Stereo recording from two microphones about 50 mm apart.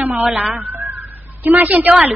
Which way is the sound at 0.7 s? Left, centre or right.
Right.